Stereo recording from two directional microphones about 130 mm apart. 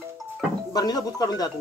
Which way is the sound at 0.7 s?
30° left (ahead or behind).